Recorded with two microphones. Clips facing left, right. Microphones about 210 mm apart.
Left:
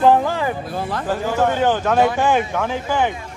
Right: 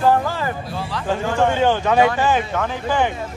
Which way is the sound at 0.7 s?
50° left (ahead or behind).